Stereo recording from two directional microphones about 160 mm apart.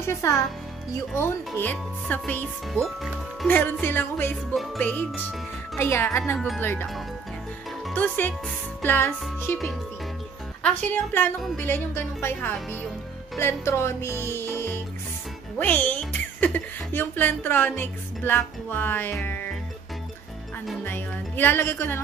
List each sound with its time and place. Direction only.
0.0 s a child's voice: 15° left (ahead or behind)
1.6 s speech: 10° left (ahead or behind)
7.9 s speech: 10° left (ahead or behind)
10.8 s speech: 10° left (ahead or behind)
13.4 s music: 15° left (ahead or behind)
15.5 s speech: 10° left (ahead or behind)
20.8 s speech: 10° left (ahead or behind)